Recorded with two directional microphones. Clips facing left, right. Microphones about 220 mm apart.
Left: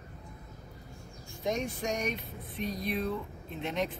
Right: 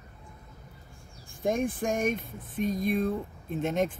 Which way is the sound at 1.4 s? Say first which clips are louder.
Right 5 dB; 50° right (ahead or behind).